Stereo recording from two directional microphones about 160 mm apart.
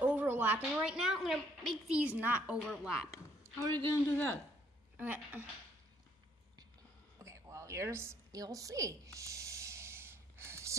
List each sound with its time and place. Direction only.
0.0 s a woman's voice: 10° right (ahead or behind)
3.5 s a woman's voice: 15° left (ahead or behind)
4.9 s a child's voice: 10° right (ahead or behind)
7.2 s a sound: 20° right (ahead or behind)